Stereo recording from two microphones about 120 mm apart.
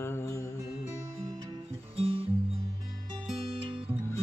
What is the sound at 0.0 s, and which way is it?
Music, 20° left (ahead or behind).